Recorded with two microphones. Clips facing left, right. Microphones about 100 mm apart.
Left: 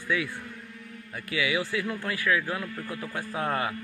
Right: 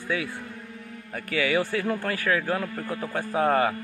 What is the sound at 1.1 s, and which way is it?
A man's voice, 45° right (ahead or behind).